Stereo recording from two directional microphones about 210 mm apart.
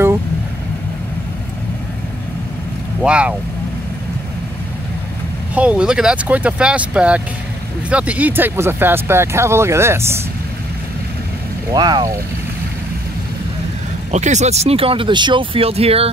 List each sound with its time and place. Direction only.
3.0 s speech: 5° right (ahead or behind)
5.5 s speech: 5° right (ahead or behind)
11.7 s speech: 20° right (ahead or behind)
14.1 s speech: 35° right (ahead or behind)